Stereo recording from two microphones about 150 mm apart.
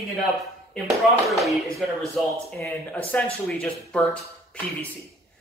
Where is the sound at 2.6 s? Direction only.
10° left (ahead or behind).